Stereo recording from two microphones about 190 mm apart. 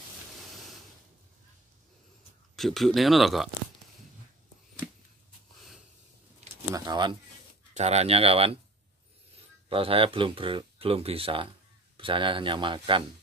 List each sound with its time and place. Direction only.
2.5 s speech: centre (ahead or behind)
6.7 s speech: 20° right (ahead or behind)
7.7 s speech: 35° right (ahead or behind)
9.7 s speech: 30° right (ahead or behind)